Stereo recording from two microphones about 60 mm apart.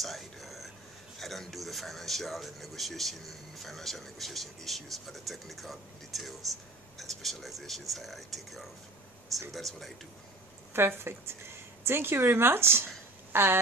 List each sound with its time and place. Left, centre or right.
0.0 s whispering: centre
1.2 s speech: centre
10.7 s a woman's voice: right